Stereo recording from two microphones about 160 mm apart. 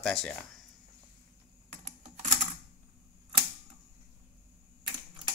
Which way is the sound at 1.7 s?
50° right (ahead or behind).